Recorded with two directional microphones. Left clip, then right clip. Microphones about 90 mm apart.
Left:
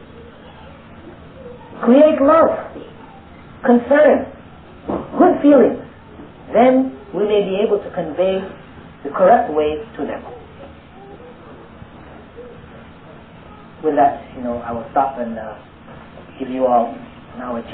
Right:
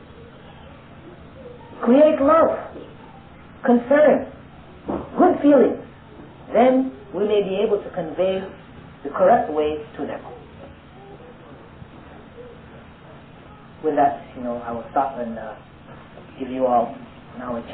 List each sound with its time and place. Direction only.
2.0 s speech: 35° right (ahead or behind)
4.8 s bow-wow: 40° right (ahead or behind)
6.5 s speech: 40° right (ahead or behind)
13.7 s a man's voice: 45° right (ahead or behind)